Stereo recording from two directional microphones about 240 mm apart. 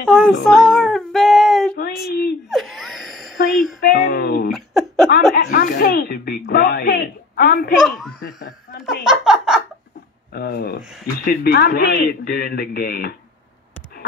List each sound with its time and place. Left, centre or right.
0.1 s child singing: centre
2.0 s speech: left
2.5 s sigh: centre
3.3 s a woman's voice: left
4.5 s a sound: centre
5.1 s speech: left
7.8 s speech: centre
8.4 s speech: left
8.8 s speech: centre
10.3 s speech: left